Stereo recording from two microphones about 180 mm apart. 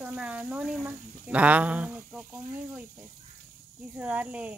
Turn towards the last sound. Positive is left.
turn(degrees=-10)  # may be behind; listen again after turning